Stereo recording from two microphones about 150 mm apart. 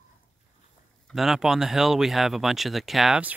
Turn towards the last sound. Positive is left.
turn(degrees=-5)  # may be behind; listen again after turning